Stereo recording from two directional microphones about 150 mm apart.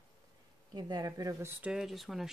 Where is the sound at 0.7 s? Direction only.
25° right (ahead or behind).